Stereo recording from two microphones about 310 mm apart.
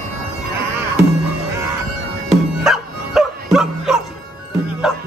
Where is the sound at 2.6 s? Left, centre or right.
Centre.